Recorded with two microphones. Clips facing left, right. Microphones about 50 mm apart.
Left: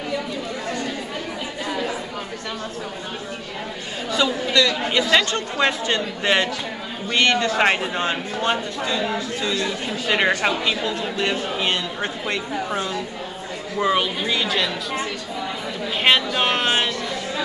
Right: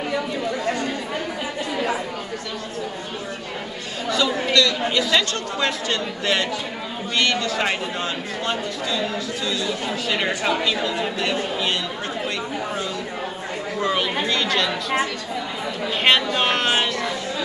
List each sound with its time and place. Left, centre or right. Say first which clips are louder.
4.1 s speech: even; centre
13.7 s speech: left 2 dB; centre
16.0 s speech: even; centre